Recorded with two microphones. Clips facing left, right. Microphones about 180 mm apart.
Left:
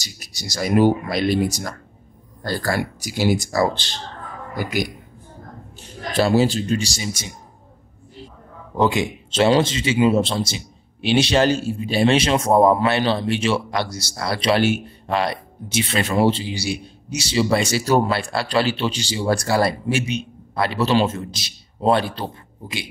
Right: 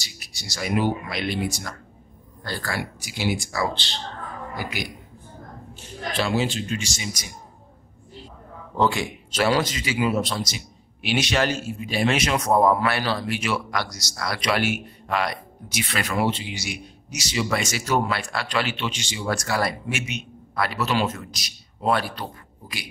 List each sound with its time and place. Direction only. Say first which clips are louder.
0.0 s a woman's voice: left 6 dB; 40° left (ahead or behind)
6.1 s speech: left 7 dB; 35° left (ahead or behind)
8.7 s speech: left 3 dB; 20° left (ahead or behind)